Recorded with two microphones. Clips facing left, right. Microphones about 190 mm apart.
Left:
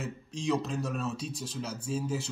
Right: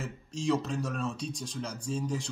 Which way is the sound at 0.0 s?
Centre (ahead or behind).